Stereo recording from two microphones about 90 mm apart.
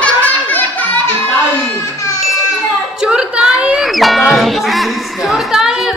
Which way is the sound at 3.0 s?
10° right (ahead or behind).